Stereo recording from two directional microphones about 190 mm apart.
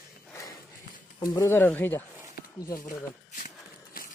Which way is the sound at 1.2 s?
15° left (ahead or behind).